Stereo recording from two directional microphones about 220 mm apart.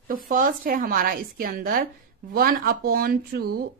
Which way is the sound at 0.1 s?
40° right (ahead or behind).